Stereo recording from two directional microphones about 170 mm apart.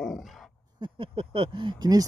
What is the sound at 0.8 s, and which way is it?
Speech, 30° right (ahead or behind).